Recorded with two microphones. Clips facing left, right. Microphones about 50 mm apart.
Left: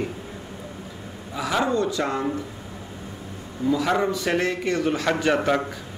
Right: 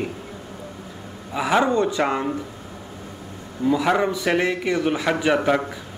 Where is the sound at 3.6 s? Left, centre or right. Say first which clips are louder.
Right 2 dB; centre.